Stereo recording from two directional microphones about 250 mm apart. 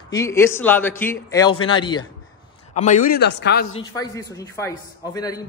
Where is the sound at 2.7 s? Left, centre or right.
Left.